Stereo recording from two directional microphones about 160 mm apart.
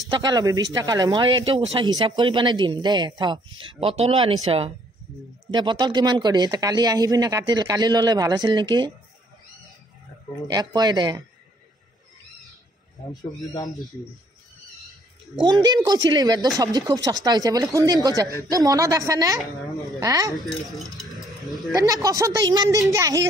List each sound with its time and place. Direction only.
0.1 s speech: 25° right (ahead or behind)
10.5 s speech: 25° right (ahead or behind)
15.4 s speech: 25° right (ahead or behind)
20.3 s speech: centre (ahead or behind)
21.7 s speech: 20° right (ahead or behind)